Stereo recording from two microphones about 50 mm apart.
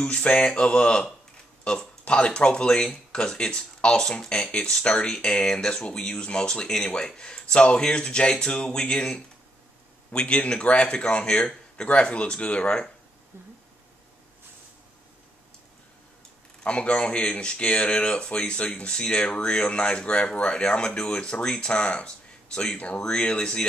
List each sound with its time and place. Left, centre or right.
0.0 s speech: left
16.6 s speech: left